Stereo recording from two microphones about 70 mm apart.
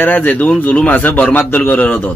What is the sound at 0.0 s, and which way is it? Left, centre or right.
A man's voice, left.